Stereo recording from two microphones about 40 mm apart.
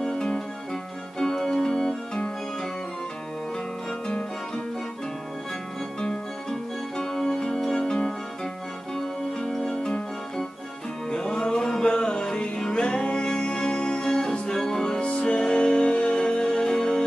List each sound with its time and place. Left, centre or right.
0.0 s music: centre
5.9 s music: centre
11.1 s music: centre